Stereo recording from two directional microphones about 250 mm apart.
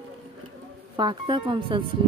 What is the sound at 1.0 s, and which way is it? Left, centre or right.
Speech, centre.